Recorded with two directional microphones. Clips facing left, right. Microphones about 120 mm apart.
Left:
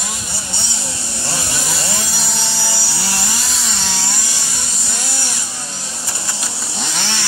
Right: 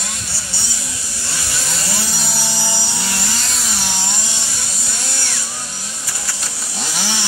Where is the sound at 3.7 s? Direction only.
15° right (ahead or behind).